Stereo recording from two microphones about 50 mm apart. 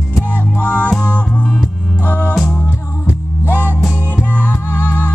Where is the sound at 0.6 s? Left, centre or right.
Left.